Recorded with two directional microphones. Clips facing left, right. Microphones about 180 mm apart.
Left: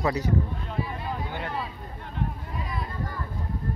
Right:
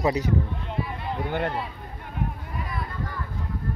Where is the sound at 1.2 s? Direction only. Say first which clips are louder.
Right 7 dB; 60° right (ahead or behind).